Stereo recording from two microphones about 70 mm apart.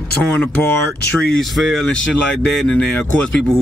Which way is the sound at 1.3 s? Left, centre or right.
Centre.